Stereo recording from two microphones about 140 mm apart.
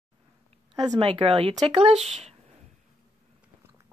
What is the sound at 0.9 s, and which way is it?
Speech, 40° right (ahead or behind).